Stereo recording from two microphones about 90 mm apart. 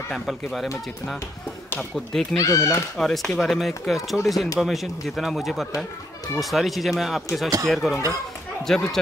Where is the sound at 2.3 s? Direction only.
35° left (ahead or behind).